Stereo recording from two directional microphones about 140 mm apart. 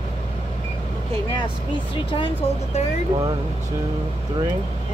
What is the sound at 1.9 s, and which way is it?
Speech, 35° left (ahead or behind).